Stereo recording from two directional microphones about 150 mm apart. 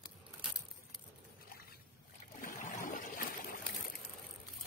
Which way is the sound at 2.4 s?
60° left (ahead or behind).